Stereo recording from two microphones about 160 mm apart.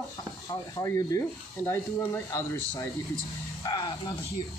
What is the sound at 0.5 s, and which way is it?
Speech, 20° left (ahead or behind).